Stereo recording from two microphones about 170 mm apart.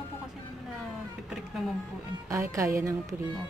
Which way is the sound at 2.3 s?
15° right (ahead or behind).